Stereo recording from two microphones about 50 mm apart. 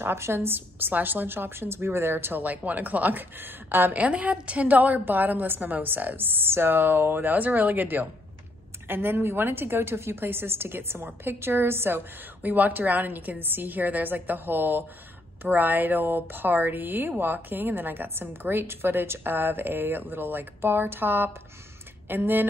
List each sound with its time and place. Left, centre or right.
0.0 s a woman's voice: right
2.4 s a woman's voice: right
3.9 s a woman's voice: right
12.4 s a woman's voice: right